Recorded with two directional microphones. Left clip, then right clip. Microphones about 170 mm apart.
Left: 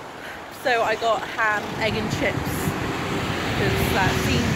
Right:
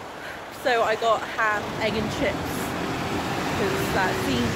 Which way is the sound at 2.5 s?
60° right (ahead or behind).